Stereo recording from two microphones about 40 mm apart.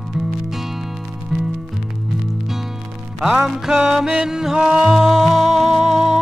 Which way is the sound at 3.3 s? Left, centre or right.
Centre.